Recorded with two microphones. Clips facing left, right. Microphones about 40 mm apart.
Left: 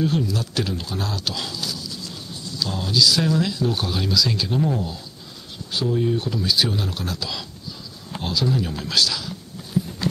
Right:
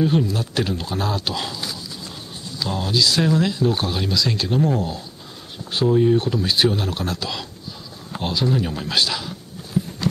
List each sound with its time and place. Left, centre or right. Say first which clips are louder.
0.0 s speech: right 3 dB; centre
4.6 s speech: right 3 dB; centre
5.7 s speech: right 5 dB; right